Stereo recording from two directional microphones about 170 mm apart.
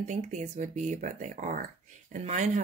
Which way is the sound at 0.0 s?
45° right (ahead or behind).